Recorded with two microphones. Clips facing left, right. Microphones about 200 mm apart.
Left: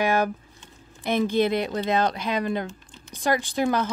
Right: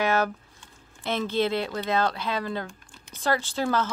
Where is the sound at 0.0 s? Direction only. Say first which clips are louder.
Left 2 dB; 15° left (ahead or behind).